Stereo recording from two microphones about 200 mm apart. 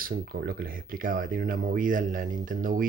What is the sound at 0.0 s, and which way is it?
Speech, 45° right (ahead or behind).